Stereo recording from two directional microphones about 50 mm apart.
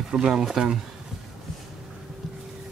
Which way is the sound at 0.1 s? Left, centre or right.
Centre.